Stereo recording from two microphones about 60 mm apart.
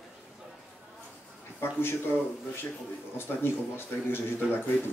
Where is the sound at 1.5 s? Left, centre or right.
Left.